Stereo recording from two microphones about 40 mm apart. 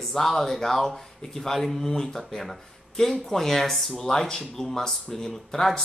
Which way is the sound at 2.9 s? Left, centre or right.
Centre.